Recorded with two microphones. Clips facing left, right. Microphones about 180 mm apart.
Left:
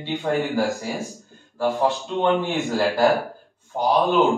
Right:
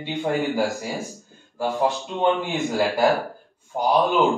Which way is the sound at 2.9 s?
Centre (ahead or behind).